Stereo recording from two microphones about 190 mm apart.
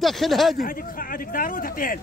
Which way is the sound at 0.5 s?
45° left (ahead or behind).